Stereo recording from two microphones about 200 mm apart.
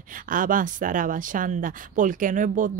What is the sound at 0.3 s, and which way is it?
Speech, 40° right (ahead or behind).